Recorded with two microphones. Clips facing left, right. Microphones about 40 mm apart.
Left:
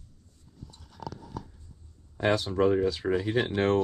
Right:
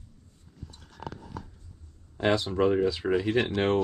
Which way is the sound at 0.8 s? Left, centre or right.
Right.